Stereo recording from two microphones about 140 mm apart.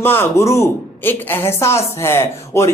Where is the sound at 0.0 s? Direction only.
15° left (ahead or behind).